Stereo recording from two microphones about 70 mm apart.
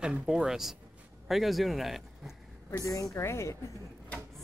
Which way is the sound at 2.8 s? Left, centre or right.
Left.